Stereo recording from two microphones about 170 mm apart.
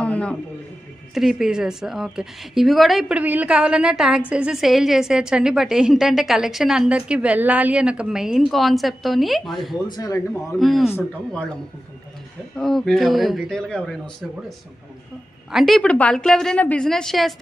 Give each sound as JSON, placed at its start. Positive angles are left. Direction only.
{"t": 0.0, "sound": "a sound", "side_deg": 5}
{"t": 1.1, "sound": "a woman's voice", "side_deg": 0}
{"t": 9.9, "sound": "speech", "side_deg": 20}
{"t": 10.6, "sound": "a woman's voice", "side_deg": 0}
{"t": 12.5, "sound": "a woman's voice", "side_deg": 5}
{"t": 15.5, "sound": "a woman's voice", "side_deg": 0}